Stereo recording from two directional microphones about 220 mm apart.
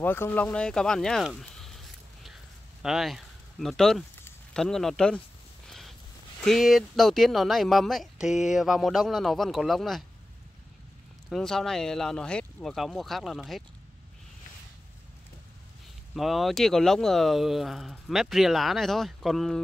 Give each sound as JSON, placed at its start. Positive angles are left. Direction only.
{"t": 0.0, "sound": "speech", "side_deg": 10}
{"t": 2.2, "sound": "a sound", "side_deg": 0}
{"t": 6.4, "sound": "speech", "side_deg": 0}
{"t": 11.2, "sound": "speech", "side_deg": 0}
{"t": 16.2, "sound": "speech", "side_deg": 0}